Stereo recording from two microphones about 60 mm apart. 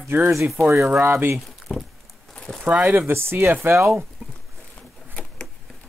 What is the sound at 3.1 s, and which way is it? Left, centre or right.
Speech, right.